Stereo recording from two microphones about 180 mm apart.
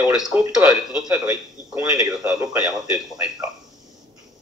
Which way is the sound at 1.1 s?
20° right (ahead or behind).